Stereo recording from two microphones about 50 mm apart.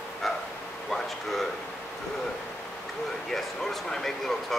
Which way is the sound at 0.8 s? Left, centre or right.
Centre.